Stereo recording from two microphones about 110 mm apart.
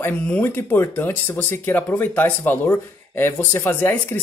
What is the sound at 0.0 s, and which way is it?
Speech, 20° left (ahead or behind).